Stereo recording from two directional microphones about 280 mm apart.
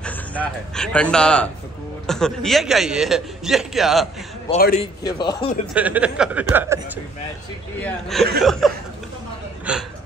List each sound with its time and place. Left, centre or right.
0.0 s a man's voice: centre
4.5 s a man's voice: left
5.0 s speech: centre
5.8 s a man's voice: centre
7.8 s a man's voice: centre